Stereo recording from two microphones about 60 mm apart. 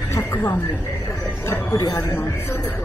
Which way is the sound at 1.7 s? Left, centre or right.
Left.